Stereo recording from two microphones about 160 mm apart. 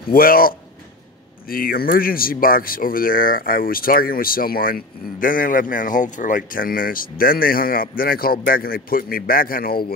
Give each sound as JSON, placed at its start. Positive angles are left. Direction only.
{"t": 0.1, "sound": "speech", "side_deg": 65}